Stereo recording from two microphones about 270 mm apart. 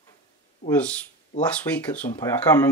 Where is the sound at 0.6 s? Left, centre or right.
Left.